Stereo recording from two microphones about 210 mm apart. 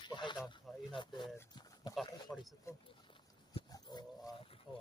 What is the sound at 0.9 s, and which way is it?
Speech, 20° left (ahead or behind).